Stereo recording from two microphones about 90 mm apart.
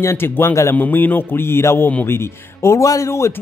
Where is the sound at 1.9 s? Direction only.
25° left (ahead or behind).